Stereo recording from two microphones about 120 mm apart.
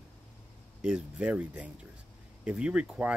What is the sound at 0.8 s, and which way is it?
Speech, 10° right (ahead or behind).